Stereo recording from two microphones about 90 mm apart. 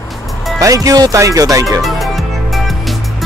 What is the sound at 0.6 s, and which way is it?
Speech, 40° right (ahead or behind).